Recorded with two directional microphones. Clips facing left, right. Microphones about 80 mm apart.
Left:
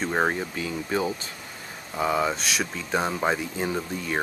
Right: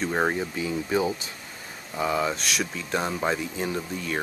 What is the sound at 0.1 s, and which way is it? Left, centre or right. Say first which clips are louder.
Speech: left 1 dB; centre.